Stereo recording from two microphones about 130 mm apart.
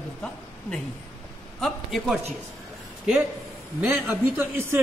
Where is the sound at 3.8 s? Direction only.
15° right (ahead or behind).